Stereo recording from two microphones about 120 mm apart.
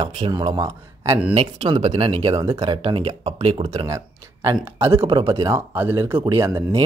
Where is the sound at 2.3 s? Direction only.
30° right (ahead or behind); by 3.8 s 55° right (ahead or behind).